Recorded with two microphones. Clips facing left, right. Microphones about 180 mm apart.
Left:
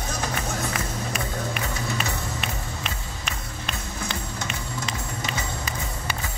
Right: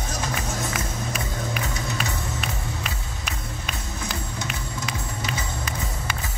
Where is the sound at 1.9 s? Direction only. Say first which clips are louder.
Even; centre (ahead or behind).